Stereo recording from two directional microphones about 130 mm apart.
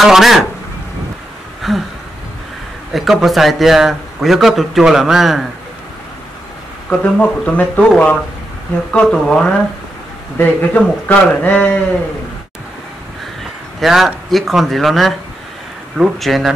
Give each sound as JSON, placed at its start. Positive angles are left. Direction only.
{"t": 0.0, "sound": "a man's voice", "side_deg": 0}
{"t": 1.6, "sound": "a sound", "side_deg": 0}
{"t": 2.9, "sound": "a man's voice", "side_deg": 0}
{"t": 6.9, "sound": "speech", "side_deg": 10}
{"t": 13.7, "sound": "a man's voice", "side_deg": 0}